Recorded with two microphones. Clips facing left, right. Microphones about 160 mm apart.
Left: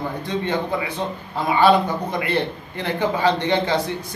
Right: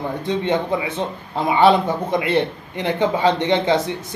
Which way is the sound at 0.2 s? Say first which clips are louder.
Right 4 dB; 25° right (ahead or behind).